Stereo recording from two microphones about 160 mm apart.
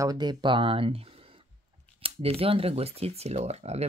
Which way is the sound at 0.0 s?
25° right (ahead or behind).